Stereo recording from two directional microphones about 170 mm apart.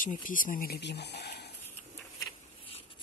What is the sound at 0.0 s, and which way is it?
Speech, 50° left (ahead or behind).